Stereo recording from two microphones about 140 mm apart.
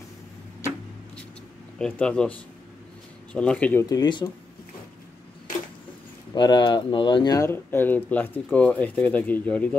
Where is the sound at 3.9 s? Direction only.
30° left (ahead or behind).